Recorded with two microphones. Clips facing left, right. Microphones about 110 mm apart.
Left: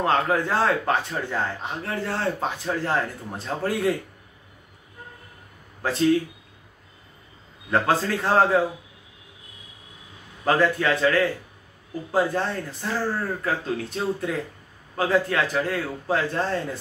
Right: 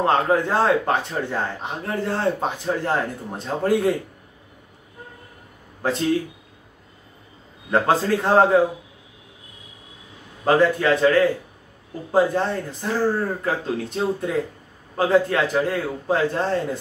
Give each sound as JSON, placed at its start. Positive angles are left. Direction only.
{"t": 0.0, "sound": "speech", "side_deg": -25}
{"t": 5.8, "sound": "speech", "side_deg": -25}
{"t": 7.9, "sound": "speech", "side_deg": -20}
{"t": 10.4, "sound": "speech", "side_deg": -20}